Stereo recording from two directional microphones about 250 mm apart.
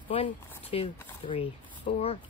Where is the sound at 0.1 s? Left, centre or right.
Left.